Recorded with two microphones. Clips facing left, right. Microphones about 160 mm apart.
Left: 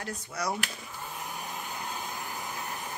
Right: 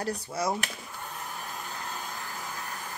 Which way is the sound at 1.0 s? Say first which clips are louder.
Left 1 dB; 10° left (ahead or behind).